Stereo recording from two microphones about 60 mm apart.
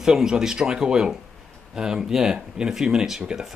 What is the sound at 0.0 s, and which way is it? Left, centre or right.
Speech, centre.